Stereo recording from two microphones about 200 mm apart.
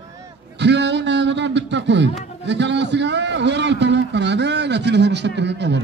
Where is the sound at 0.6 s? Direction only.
60° right (ahead or behind).